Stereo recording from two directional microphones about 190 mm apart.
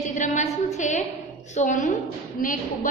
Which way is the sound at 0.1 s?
40° left (ahead or behind).